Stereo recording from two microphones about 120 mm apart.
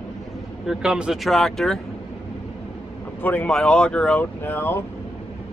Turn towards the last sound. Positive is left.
turn(degrees=20)  # may be behind; listen again after turning